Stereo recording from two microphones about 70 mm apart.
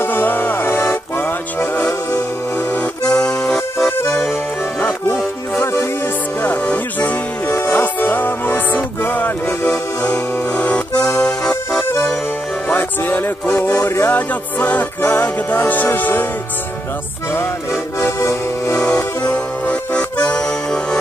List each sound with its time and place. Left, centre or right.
0.0 s music: left
3.1 s accordion: centre
4.8 s music: left
6.4 s music: left
12.7 s music: left
18.0 s accordion: left
18.8 s music: centre
19.2 s accordion: centre